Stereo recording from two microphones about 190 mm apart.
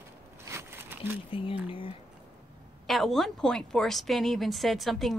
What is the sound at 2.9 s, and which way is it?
Speech, centre (ahead or behind).